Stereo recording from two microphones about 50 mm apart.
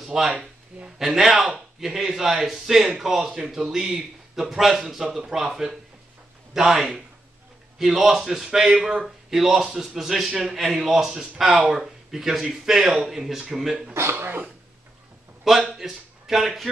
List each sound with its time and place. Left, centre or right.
0.0 s a man's voice: centre
13.9 s speech: right
15.5 s speech: centre